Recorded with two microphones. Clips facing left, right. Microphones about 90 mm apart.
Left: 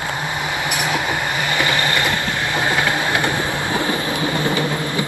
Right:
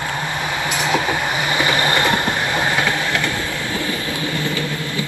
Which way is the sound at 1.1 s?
15° right (ahead or behind).